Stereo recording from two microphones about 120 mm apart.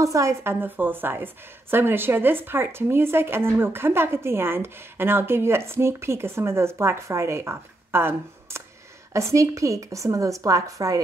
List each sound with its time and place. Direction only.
0.0 s a woman's voice: 25° right (ahead or behind)